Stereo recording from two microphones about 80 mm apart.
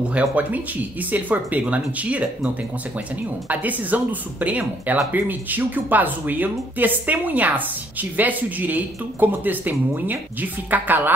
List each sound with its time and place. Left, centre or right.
0.1 s speech: centre